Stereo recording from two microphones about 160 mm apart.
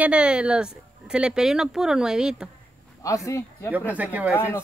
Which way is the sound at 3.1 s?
20° left (ahead or behind).